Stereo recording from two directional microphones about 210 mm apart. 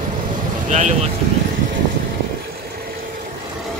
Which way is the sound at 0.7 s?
35° right (ahead or behind).